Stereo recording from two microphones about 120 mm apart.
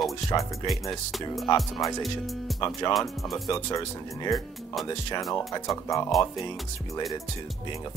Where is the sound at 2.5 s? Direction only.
Centre (ahead or behind).